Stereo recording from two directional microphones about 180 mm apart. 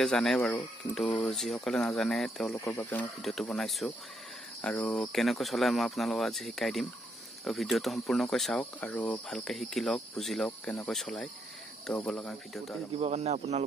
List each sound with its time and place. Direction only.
0.0 s speech: centre (ahead or behind)
2.5 s speech: 10° left (ahead or behind)
13.0 s speech: 35° right (ahead or behind)